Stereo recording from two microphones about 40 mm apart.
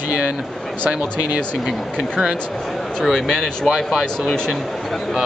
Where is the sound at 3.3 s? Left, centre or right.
Centre.